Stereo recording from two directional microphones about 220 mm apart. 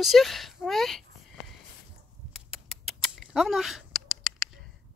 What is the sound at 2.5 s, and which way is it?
Rodents, centre (ahead or behind).